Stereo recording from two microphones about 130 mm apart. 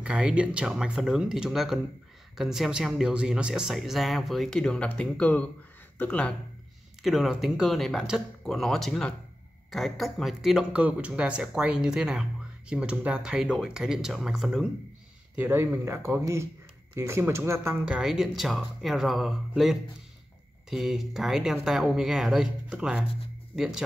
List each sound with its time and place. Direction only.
0.0 s speech: 10° right (ahead or behind); by 6.3 s 10° left (ahead or behind)
7.0 s speech: 5° right (ahead or behind)
15.3 s speech: 15° right (ahead or behind)
17.8 s speech: 5° right (ahead or behind)